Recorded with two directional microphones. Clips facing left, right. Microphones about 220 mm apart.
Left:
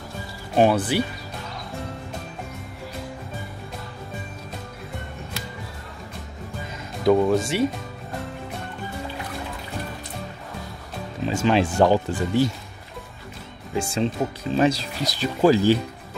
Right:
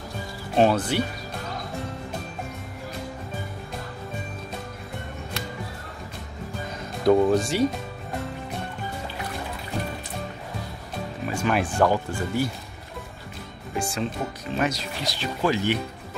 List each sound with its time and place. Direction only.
0.6 s speech: 5° left (ahead or behind)
7.1 s speech: centre (ahead or behind)
11.2 s speech: 25° left (ahead or behind)
13.7 s speech: 30° left (ahead or behind)